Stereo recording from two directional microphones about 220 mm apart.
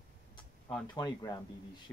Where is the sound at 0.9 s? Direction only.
15° left (ahead or behind).